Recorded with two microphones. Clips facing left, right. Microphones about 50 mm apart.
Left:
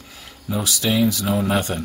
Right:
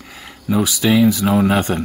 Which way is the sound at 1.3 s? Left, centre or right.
Right.